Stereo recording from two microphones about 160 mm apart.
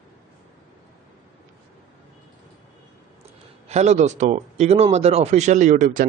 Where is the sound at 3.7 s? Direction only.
45° right (ahead or behind).